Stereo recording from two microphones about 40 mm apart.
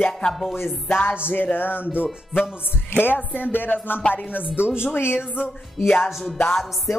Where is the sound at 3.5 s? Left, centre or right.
Left.